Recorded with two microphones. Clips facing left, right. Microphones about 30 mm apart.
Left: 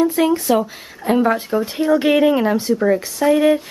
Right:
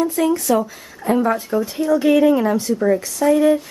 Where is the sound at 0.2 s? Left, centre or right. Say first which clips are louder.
Left 1 dB; left.